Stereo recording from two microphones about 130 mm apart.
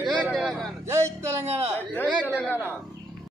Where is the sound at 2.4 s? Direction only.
15° left (ahead or behind).